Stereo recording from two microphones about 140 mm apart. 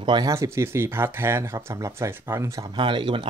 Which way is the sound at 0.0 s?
30° right (ahead or behind).